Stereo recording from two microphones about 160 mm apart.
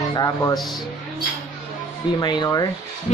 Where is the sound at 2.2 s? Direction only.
25° left (ahead or behind).